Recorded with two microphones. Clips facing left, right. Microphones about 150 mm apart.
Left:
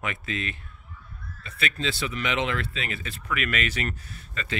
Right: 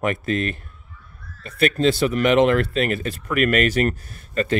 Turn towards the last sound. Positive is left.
turn(degrees=-45)  # may be behind; listen again after turning